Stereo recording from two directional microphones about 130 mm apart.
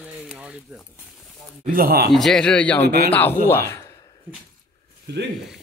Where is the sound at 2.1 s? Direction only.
5° left (ahead or behind).